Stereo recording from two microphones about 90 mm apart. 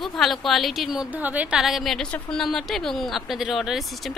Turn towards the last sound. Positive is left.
turn(degrees=-5)  # may be behind; listen again after turning